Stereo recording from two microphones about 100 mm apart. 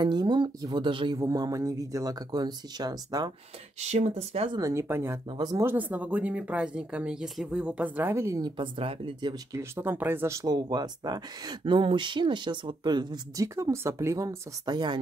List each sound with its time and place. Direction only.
0.0 s speech: 45° right (ahead or behind)
1.1 s speech: 40° right (ahead or behind)
4.1 s speech: 90° right
4.6 s speech: 30° right (ahead or behind)
5.4 s speech: 40° right (ahead or behind)
5.7 s speech: 15° right (ahead or behind)
8.4 s speech: 45° right (ahead or behind)
8.7 s speech: 60° right (ahead or behind)
9.5 s speech: 25° right (ahead or behind)
10.4 s speech: 45° right (ahead or behind)
13.6 s speech: 30° right (ahead or behind); by 15.0 s 45° right (ahead or behind)